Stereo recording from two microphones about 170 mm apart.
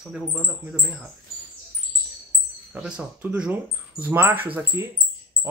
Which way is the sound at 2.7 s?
5° right (ahead or behind).